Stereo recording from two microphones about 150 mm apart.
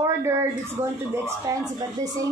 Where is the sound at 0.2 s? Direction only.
20° right (ahead or behind).